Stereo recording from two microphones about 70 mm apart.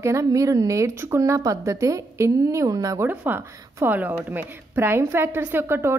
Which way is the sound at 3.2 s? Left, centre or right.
Right.